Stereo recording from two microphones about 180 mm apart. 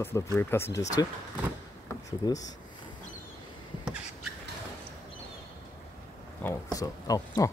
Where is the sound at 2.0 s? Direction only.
20° left (ahead or behind).